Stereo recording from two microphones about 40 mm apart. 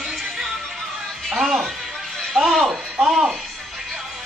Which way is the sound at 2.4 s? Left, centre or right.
Centre.